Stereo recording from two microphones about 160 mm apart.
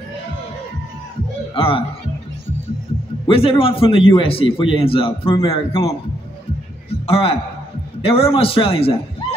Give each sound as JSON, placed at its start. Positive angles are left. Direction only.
{"t": 1.5, "sound": "speech", "side_deg": 35}
{"t": 3.3, "sound": "a man's voice", "side_deg": 35}
{"t": 6.9, "sound": "a sound", "side_deg": 35}
{"t": 8.0, "sound": "a man's voice", "side_deg": 35}